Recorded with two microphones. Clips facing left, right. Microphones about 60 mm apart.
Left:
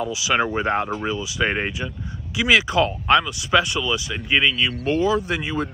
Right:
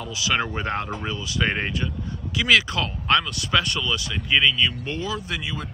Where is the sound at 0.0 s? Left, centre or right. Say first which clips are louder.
Left 4 dB; centre.